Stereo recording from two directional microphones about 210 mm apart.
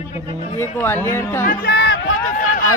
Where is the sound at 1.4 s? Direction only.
50° left (ahead or behind).